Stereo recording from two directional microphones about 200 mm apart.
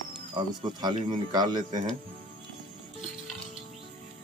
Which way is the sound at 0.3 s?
20° right (ahead or behind).